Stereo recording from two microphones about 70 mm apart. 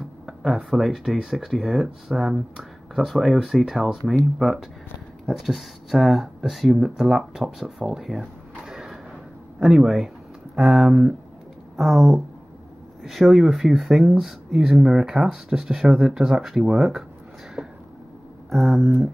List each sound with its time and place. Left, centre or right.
0.3 s speech: centre
17.6 s a sound: right
18.5 s speech: centre